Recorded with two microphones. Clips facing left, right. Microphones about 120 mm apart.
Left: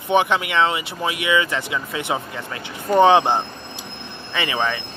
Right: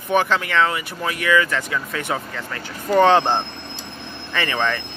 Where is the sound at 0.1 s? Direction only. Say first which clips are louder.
Left 1 dB; 20° left (ahead or behind).